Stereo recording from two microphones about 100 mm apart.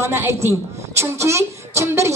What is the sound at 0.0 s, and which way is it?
A woman's voice, 25° right (ahead or behind).